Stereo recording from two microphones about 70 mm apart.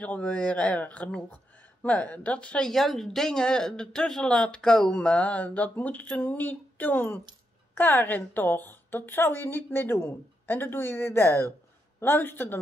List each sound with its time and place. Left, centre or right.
0.0 s a woman's voice: left